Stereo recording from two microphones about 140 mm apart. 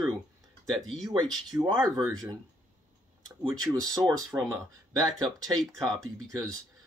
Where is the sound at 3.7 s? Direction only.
25° right (ahead or behind).